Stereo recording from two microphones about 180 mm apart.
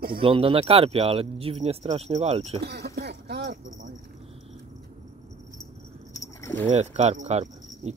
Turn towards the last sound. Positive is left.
turn(degrees=-35)  # may be behind; listen again after turning